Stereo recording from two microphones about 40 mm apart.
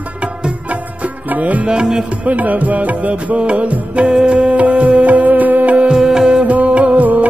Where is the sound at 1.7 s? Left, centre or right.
Centre.